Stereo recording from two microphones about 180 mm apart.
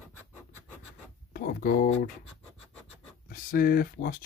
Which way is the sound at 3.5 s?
55° left (ahead or behind).